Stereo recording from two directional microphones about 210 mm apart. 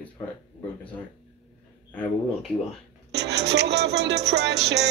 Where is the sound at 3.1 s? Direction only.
55° right (ahead or behind).